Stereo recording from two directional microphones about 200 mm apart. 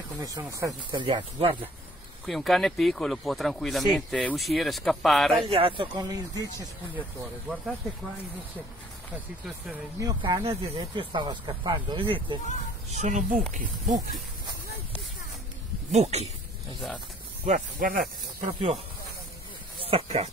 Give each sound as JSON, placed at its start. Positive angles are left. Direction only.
{"t": 0.2, "sound": "speech", "side_deg": -15}
{"t": 2.2, "sound": "speech", "side_deg": 0}
{"t": 5.4, "sound": "speech", "side_deg": -30}
{"t": 7.2, "sound": "speech", "side_deg": -5}
{"t": 9.1, "sound": "speech", "side_deg": -5}
{"t": 9.9, "sound": "speech", "side_deg": -20}
{"t": 13.0, "sound": "speech", "side_deg": -40}
{"t": 15.9, "sound": "speech", "side_deg": -30}
{"t": 17.5, "sound": "speech", "side_deg": -40}
{"t": 19.9, "sound": "speech", "side_deg": -30}